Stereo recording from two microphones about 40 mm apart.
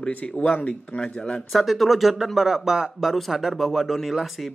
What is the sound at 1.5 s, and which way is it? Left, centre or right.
Speech, centre.